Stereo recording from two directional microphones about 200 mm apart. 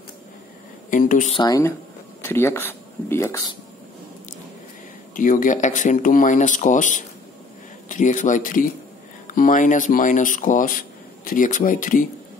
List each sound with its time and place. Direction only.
0.8 s speech: 40° left (ahead or behind)
1.4 s speech: 15° left (ahead or behind)
5.1 s speech: 40° left (ahead or behind)